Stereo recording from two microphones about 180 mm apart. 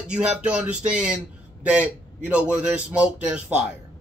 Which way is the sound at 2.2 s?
5° right (ahead or behind).